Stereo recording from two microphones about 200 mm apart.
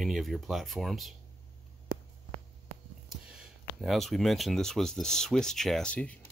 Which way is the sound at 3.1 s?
5° right (ahead or behind).